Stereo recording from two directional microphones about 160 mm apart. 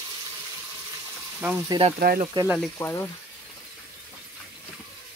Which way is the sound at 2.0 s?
70° right (ahead or behind).